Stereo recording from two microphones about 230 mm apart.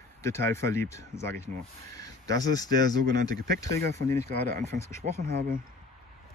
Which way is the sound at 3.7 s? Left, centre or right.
Right.